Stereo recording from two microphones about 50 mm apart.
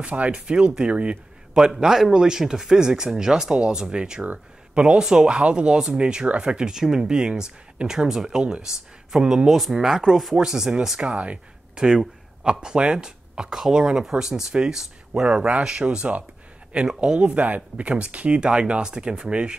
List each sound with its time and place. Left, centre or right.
0.0 s speech: right
15.2 s speech: right